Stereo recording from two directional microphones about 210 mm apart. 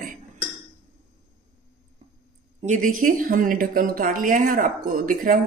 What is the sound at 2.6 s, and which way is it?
Speech, 40° right (ahead or behind).